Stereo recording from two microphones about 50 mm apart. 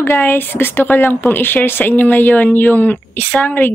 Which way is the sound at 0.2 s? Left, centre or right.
Left.